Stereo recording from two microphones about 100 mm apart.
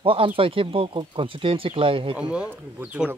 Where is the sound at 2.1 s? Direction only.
10° right (ahead or behind).